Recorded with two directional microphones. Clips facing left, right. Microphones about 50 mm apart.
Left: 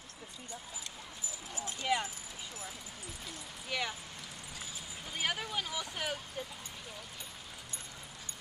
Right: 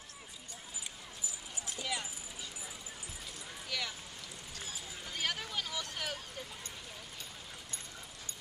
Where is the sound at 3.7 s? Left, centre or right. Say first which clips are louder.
Left 3 dB; left.